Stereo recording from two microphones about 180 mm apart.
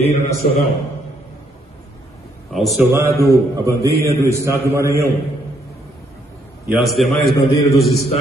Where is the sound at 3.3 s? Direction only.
15° right (ahead or behind).